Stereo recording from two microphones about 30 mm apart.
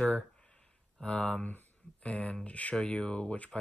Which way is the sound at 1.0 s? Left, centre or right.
Left.